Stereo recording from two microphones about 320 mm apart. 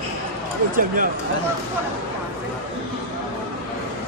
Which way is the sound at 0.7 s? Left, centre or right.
Right.